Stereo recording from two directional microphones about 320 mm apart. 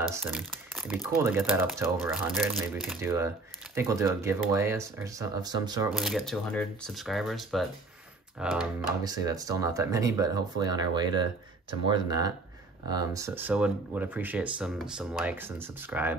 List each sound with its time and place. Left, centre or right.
0.0 s speech: centre
5.9 s speech: centre